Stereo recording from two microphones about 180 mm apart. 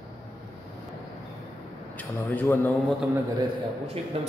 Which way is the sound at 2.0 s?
10° left (ahead or behind).